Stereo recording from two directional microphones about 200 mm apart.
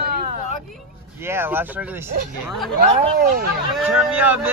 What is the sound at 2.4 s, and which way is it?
Speech, centre (ahead or behind).